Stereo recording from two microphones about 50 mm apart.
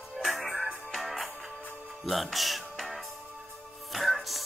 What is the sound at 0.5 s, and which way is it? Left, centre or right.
Music, right.